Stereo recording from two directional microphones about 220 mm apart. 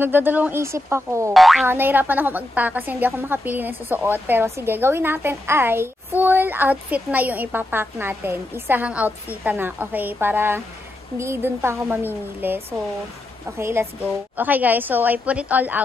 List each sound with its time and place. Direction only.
0.0 s a woman's voice: 10° right (ahead or behind)
1.3 s boing: centre (ahead or behind)
1.7 s a woman's voice: 10° right (ahead or behind)